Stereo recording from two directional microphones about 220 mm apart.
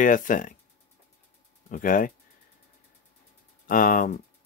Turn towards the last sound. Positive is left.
turn(degrees=40)  # may be behind; listen again after turning